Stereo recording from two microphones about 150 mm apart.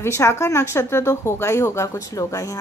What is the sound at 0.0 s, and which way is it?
A woman's voice, 15° left (ahead or behind).